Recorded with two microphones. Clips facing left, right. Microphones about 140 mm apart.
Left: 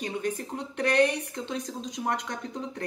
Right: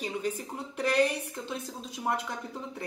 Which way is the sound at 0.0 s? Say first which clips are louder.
Left 2 dB; 5° right (ahead or behind).